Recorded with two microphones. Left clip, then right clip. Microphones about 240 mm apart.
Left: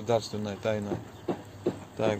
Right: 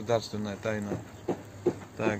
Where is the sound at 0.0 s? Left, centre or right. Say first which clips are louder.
Left 1 dB; left.